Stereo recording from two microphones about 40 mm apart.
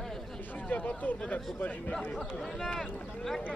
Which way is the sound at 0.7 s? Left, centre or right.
Left.